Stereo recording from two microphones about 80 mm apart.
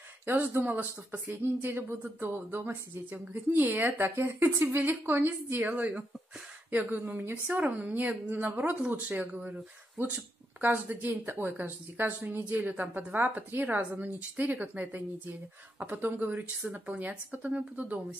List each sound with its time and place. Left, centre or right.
0.3 s a woman's voice: right